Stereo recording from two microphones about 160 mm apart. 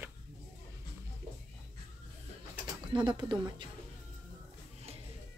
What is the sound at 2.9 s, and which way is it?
Speech, 30° right (ahead or behind).